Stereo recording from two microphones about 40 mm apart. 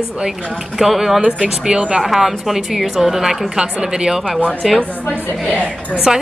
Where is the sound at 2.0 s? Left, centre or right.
Centre.